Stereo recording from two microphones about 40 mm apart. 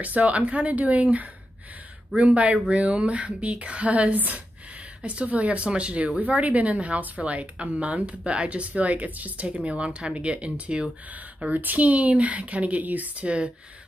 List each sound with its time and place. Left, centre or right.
0.0 s speech: right
11.4 s speech: right
13.2 s speech: right